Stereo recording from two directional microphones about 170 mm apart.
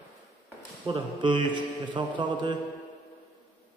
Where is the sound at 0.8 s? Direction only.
30° right (ahead or behind).